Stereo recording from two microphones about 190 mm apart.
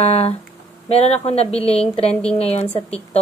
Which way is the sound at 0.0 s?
30° left (ahead or behind).